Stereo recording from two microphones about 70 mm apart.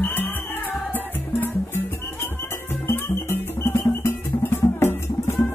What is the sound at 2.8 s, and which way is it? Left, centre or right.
Music, left.